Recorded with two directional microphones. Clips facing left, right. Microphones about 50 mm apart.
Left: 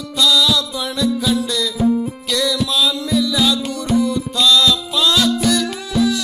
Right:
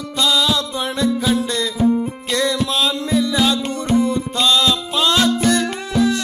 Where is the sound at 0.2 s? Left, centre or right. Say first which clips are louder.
Left 2 dB; right.